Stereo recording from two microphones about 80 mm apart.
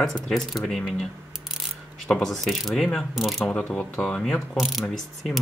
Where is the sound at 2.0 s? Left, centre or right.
Centre.